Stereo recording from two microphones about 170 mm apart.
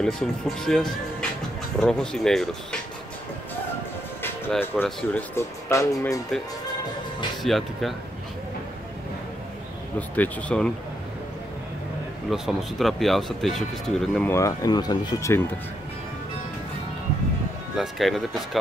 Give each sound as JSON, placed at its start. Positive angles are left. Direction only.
{"t": 0.0, "sound": "speech", "side_deg": 5}
{"t": 4.2, "sound": "speech", "side_deg": 10}
{"t": 7.4, "sound": "speech", "side_deg": 0}
{"t": 9.9, "sound": "speech", "side_deg": 10}
{"t": 12.3, "sound": "speech", "side_deg": 0}
{"t": 17.7, "sound": "speech", "side_deg": 0}